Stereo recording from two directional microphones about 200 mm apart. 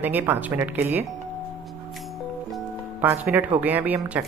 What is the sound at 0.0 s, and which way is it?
Speech, 10° right (ahead or behind).